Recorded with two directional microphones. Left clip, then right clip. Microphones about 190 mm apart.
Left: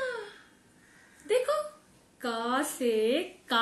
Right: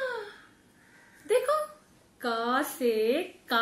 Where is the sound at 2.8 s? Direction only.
15° left (ahead or behind).